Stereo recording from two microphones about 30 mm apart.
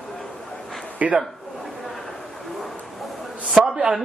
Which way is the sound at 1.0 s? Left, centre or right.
Right.